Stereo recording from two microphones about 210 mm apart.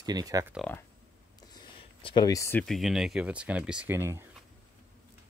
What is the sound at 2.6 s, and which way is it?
Speech, centre (ahead or behind).